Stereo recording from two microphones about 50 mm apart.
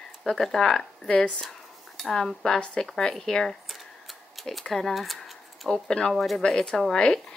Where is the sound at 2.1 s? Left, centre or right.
Centre.